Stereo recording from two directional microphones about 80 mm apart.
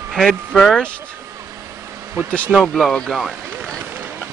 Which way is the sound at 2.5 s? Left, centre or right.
Centre.